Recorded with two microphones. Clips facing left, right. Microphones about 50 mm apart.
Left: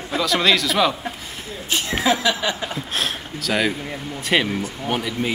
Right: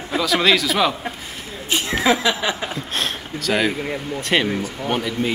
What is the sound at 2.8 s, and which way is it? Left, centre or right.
A man's voice, centre.